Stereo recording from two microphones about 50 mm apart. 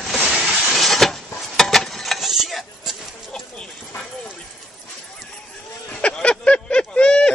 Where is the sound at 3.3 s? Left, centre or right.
Centre.